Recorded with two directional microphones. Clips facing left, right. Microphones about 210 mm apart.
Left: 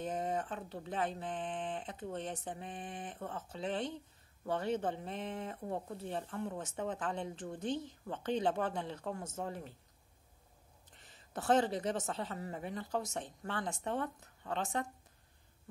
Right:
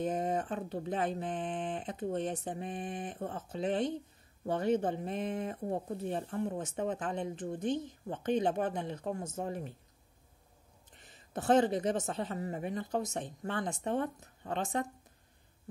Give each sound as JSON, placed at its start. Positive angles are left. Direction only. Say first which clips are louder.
{"t": 0.0, "sound": "a woman's voice", "louder": "right 4 dB", "side_deg": -20}
{"t": 11.0, "sound": "a woman's voice", "louder": "right 4 dB", "side_deg": -20}